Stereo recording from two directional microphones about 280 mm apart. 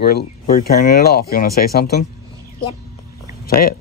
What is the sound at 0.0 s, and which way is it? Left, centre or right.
Speech, left.